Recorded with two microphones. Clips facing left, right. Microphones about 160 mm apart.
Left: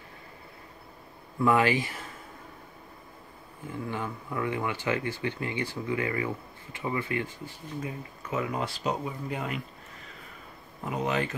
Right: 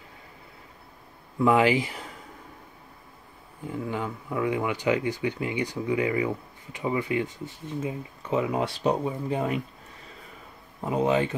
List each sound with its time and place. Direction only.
1.4 s speech: 15° right (ahead or behind)
3.6 s speech: 15° right (ahead or behind); by 9.5 s 30° right (ahead or behind)
10.9 s speech: 30° right (ahead or behind)